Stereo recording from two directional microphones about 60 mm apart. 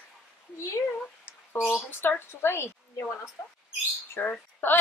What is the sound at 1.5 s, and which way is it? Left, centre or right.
A woman's voice, left.